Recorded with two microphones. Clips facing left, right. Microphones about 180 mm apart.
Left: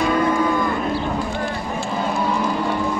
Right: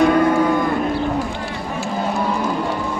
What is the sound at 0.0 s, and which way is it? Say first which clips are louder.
Cattle: right 4 dB; 60° right (ahead or behind).